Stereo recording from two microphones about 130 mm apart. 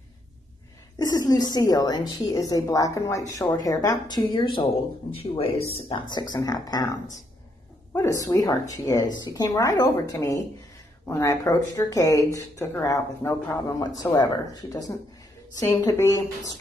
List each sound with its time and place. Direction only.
0.9 s a woman's voice: 30° left (ahead or behind)